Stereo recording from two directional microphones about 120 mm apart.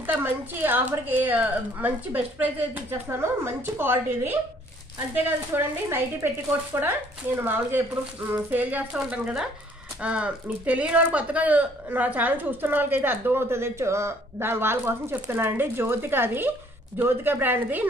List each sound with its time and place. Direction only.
0.0 s speech: 15° right (ahead or behind)